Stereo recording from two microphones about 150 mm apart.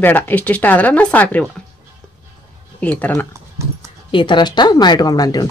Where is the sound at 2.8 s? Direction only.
10° left (ahead or behind).